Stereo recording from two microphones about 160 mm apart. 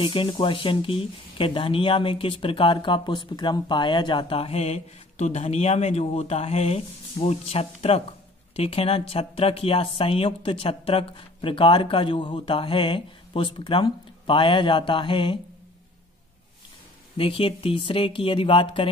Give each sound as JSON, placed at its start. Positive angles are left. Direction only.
{"t": 0.0, "sound": "speech", "side_deg": 35}
{"t": 17.2, "sound": "speech", "side_deg": 35}